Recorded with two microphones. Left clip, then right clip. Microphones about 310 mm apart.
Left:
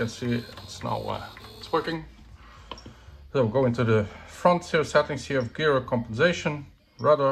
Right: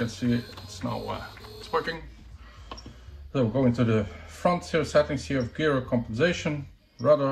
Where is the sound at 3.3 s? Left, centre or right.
Centre.